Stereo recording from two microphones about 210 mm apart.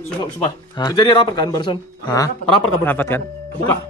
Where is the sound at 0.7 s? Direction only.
20° left (ahead or behind).